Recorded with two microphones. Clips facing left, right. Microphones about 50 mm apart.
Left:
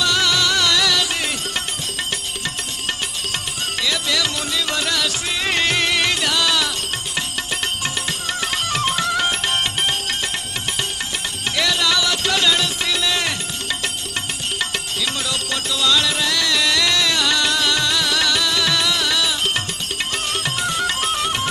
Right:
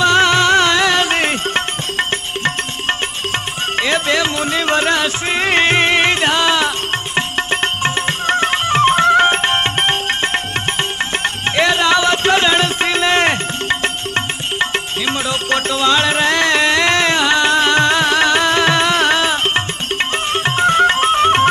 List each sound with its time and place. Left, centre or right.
0.0 s music: right